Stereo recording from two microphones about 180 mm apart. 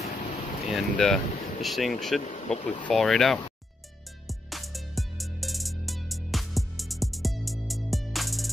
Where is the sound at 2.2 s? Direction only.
40° left (ahead or behind).